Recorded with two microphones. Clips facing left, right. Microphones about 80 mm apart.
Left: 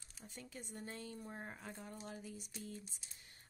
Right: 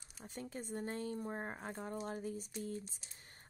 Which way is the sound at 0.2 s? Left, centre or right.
Right.